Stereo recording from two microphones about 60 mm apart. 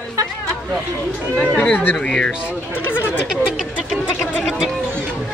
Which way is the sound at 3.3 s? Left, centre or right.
Centre.